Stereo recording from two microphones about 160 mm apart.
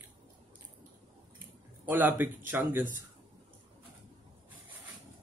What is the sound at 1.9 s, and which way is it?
Speech, 10° right (ahead or behind).